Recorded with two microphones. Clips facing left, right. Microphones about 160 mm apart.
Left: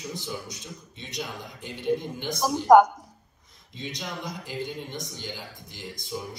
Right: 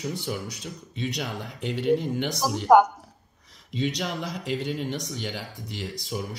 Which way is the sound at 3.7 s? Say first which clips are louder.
Right 8 dB; 70° right (ahead or behind).